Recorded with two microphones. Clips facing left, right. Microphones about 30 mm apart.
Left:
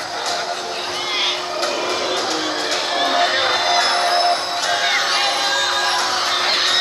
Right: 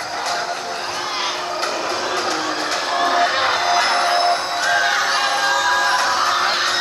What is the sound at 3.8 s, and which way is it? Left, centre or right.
Music, left.